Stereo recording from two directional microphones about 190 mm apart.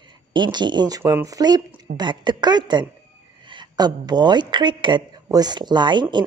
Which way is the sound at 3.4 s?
25° right (ahead or behind).